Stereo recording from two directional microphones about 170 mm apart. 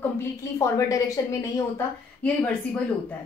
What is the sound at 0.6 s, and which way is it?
A woman's voice, 20° left (ahead or behind).